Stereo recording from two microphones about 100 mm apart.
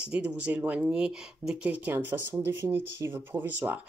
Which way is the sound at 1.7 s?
20° right (ahead or behind).